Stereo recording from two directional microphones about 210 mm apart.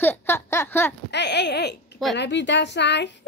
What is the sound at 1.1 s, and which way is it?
Speech, 55° left (ahead or behind).